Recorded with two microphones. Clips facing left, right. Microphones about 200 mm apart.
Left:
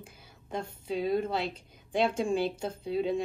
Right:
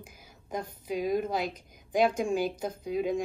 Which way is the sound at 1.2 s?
10° right (ahead or behind).